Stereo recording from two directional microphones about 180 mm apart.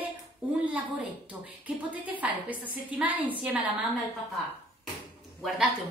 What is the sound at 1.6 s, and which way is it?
A woman's voice, 10° right (ahead or behind).